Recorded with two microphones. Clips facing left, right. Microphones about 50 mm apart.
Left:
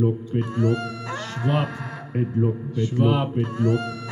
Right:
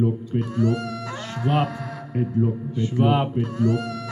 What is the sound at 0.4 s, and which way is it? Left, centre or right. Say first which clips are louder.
Mantra: even; left.